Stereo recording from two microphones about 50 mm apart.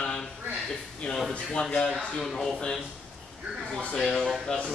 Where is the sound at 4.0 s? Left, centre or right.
Centre.